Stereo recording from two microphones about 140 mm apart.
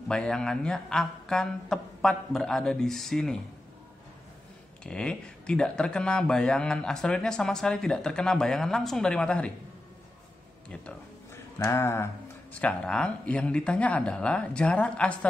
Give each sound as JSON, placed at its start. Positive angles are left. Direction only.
{"t": 0.1, "sound": "speech", "side_deg": 5}
{"t": 4.8, "sound": "speech", "side_deg": 5}
{"t": 11.5, "sound": "a sound", "side_deg": 20}
{"t": 12.5, "sound": "speech", "side_deg": 5}